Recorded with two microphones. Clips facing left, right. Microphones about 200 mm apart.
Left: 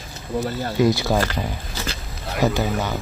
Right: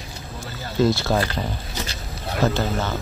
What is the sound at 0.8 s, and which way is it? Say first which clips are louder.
Speech: left 1 dB; 15° left (ahead or behind).